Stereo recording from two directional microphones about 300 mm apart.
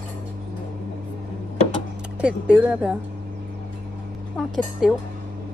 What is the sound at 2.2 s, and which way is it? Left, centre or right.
Speech, centre.